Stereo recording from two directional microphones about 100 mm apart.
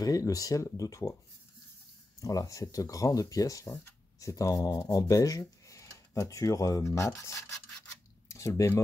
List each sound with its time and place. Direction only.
0.0 s speech: 40° left (ahead or behind)
2.1 s speech: 35° left (ahead or behind)